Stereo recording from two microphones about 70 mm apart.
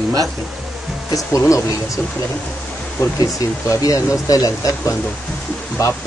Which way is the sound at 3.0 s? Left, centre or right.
Left.